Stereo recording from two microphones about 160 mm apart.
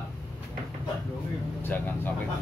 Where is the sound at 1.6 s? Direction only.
10° left (ahead or behind).